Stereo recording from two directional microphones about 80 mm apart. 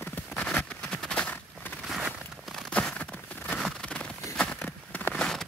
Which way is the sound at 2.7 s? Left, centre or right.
Centre.